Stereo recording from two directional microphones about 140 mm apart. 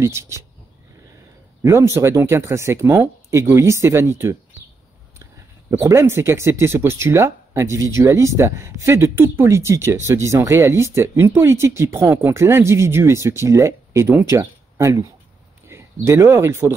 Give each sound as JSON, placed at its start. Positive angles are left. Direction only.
{"t": 0.0, "sound": "speech", "side_deg": -20}
{"t": 1.6, "sound": "speech", "side_deg": -20}
{"t": 5.7, "sound": "speech", "side_deg": -20}